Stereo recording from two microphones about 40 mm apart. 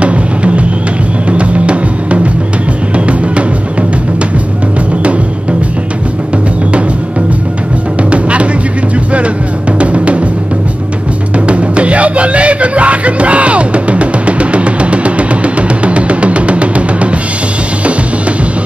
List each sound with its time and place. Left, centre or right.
0.0 s music: right
8.1 s music: right
9.8 s music: right
11.3 s music: right